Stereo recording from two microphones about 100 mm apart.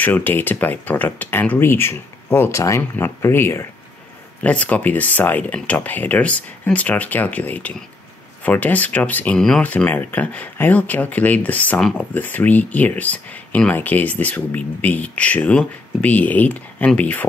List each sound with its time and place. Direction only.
0.0 s speech: 20° left (ahead or behind)